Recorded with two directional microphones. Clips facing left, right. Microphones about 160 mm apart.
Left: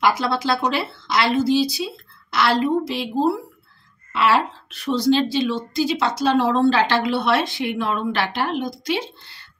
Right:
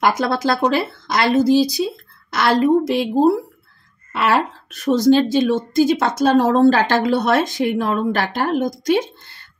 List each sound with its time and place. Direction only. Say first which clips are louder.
0.0 s a woman's voice: right 2 dB; 45° right (ahead or behind)